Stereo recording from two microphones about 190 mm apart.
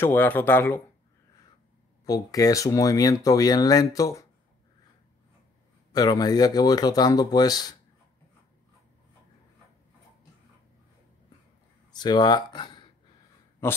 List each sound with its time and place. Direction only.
0.0 s speech: 10° left (ahead or behind)
2.0 s speech: 20° left (ahead or behind)
5.9 s speech: 20° left (ahead or behind)
11.9 s speech: 20° left (ahead or behind)